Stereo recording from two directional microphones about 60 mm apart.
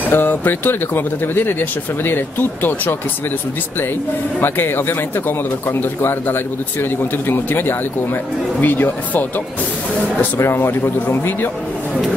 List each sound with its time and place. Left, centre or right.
0.1 s speech: left
4.4 s speech: left
10.4 s speech: left